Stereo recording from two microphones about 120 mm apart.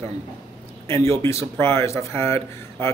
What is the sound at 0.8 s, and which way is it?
Speech, 20° left (ahead or behind).